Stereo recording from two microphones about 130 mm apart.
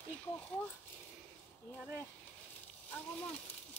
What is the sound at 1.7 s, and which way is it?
Speech, 20° left (ahead or behind).